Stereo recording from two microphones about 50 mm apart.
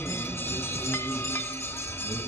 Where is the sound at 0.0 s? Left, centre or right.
Left.